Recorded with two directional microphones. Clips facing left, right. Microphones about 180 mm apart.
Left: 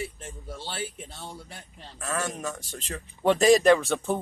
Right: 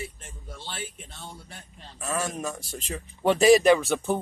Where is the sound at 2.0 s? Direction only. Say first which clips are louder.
Right 1 dB; 10° right (ahead or behind).